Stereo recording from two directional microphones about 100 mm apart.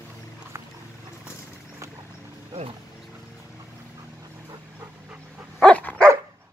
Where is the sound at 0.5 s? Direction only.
30° right (ahead or behind).